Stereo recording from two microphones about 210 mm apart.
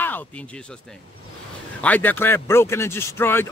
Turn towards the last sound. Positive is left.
turn(degrees=10)  # may be behind; listen again after turning